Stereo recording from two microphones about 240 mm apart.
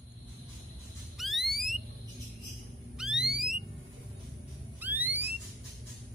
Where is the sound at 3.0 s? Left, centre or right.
Centre.